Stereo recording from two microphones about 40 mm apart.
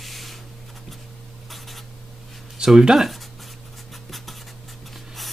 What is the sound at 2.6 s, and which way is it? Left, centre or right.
Speech, centre.